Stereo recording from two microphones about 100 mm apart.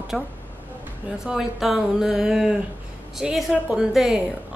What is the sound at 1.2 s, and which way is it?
Speech, 5° right (ahead or behind).